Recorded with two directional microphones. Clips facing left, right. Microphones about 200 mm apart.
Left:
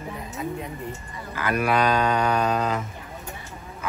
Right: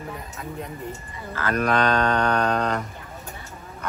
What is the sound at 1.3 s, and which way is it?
Speech, 10° left (ahead or behind).